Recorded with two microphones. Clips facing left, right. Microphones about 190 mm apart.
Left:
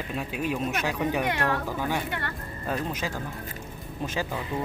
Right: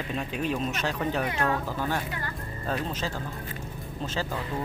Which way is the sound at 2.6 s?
10° left (ahead or behind).